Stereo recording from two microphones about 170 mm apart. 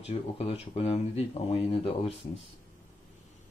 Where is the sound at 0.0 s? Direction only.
35° left (ahead or behind).